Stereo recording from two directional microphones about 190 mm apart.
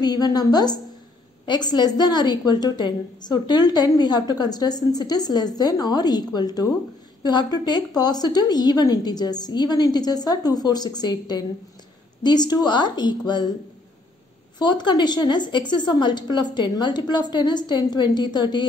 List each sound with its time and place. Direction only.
0.0 s a woman's voice: 20° left (ahead or behind)
14.6 s a woman's voice: 25° left (ahead or behind)